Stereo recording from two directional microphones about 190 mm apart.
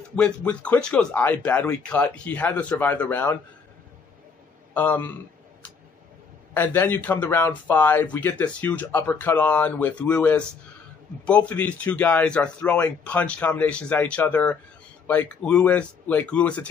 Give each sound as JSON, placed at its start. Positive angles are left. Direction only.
{"t": 0.1, "sound": "speech", "side_deg": 5}
{"t": 4.7, "sound": "speech", "side_deg": 10}
{"t": 6.5, "sound": "speech", "side_deg": 10}